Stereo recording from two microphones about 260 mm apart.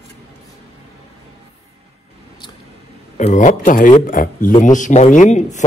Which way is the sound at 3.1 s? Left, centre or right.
Left.